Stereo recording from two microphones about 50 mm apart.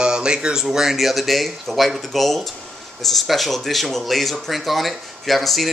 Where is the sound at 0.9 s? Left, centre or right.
Centre.